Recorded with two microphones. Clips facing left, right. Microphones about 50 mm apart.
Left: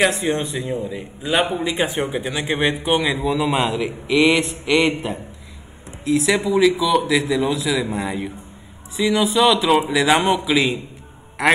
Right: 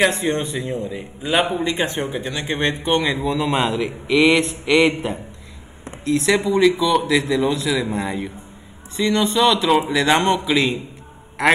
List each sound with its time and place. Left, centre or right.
0.0 s speech: centre